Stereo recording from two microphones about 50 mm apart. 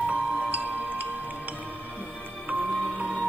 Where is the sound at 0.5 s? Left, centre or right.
Right.